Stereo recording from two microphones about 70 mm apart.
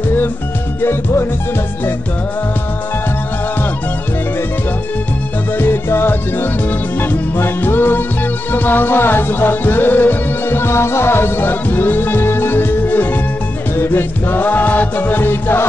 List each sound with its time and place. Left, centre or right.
5.6 s music: left